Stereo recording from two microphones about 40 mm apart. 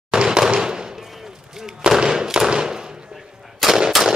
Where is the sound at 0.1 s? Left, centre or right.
Centre.